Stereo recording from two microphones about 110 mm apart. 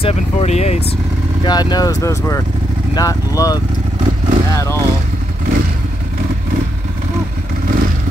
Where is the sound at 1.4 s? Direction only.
40° left (ahead or behind).